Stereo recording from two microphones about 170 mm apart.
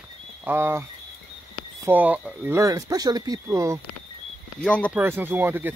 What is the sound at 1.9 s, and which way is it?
Speech, 10° right (ahead or behind).